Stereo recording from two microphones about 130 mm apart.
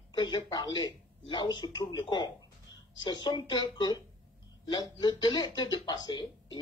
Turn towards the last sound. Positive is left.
turn(degrees=35)  # may be behind; listen again after turning